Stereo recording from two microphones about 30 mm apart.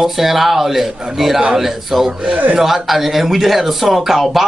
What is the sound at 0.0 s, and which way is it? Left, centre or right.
A man's voice, centre.